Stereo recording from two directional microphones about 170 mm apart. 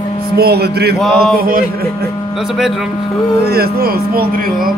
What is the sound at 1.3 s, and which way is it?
Speech, 60° right (ahead or behind).